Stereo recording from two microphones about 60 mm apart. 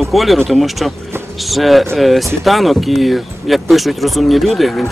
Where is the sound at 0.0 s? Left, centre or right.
Centre.